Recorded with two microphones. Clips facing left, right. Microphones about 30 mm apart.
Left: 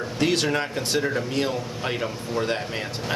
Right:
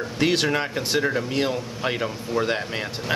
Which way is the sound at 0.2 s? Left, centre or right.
Centre.